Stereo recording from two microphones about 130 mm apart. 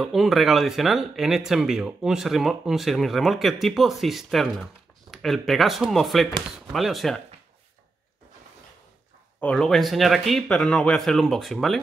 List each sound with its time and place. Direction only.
0.0 s speech: centre (ahead or behind)
9.4 s speech: 5° left (ahead or behind)